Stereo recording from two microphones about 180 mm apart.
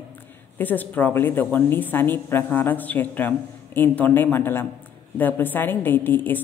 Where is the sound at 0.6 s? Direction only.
10° left (ahead or behind).